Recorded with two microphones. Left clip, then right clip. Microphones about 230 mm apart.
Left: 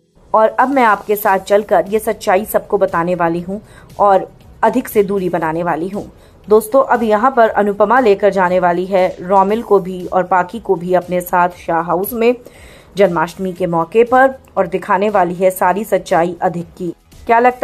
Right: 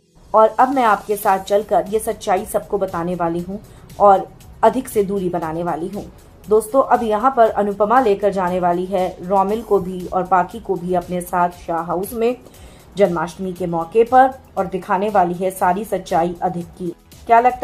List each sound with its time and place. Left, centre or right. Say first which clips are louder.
0.3 s a woman's voice: left 1 dB; left